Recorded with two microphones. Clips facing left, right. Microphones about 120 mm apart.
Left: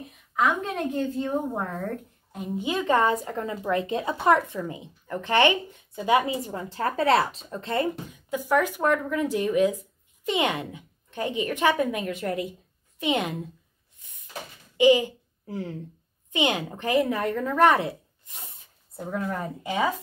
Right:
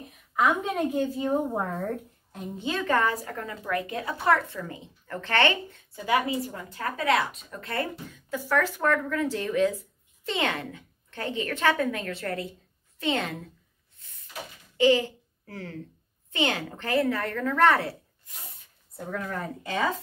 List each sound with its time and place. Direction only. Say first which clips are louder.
0.0 s a woman's voice: even; centre (ahead or behind)
2.5 s a woman's voice: left 3 dB; 15° left (ahead or behind)
13.9 s a sound: even; 15° left (ahead or behind)
14.8 s a woman's voice: left 3 dB; 15° left (ahead or behind)